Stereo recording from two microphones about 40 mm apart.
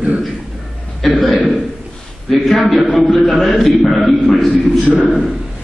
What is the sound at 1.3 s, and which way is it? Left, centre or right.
Speech, left.